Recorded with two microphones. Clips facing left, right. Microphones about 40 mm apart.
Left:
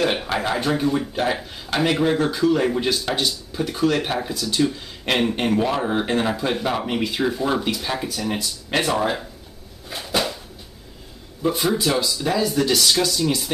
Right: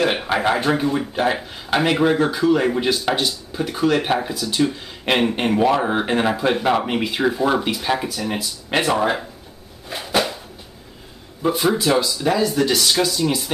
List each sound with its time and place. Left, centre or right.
0.0 s speech: centre
8.1 s speech: centre
9.8 s a sound: centre
11.8 s speech: centre